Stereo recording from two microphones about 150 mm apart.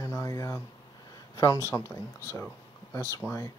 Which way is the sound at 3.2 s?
5° right (ahead or behind).